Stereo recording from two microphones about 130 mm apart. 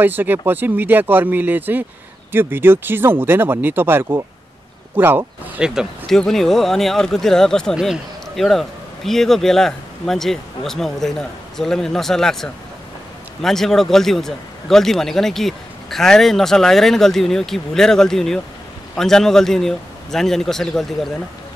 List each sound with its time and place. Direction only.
0.0 s speech: 15° right (ahead or behind)
5.8 s a man's voice: 5° left (ahead or behind)